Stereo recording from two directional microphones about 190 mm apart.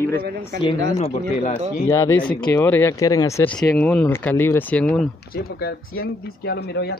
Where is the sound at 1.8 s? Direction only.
15° left (ahead or behind).